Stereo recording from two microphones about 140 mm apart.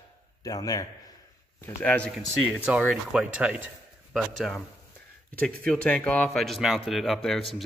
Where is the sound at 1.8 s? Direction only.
10° left (ahead or behind).